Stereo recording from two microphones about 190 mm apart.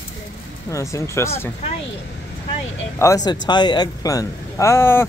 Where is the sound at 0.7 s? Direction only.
15° left (ahead or behind).